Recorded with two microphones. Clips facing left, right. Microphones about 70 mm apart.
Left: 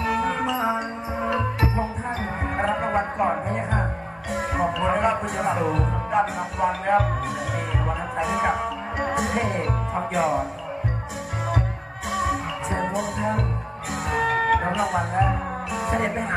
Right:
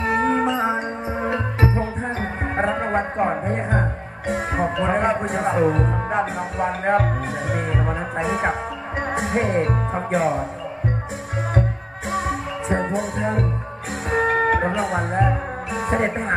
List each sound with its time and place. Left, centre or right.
0.0 s music: right
2.5 s music: right
4.3 s music: right
12.1 s music: right